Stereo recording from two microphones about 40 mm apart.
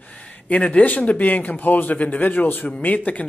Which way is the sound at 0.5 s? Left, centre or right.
Left.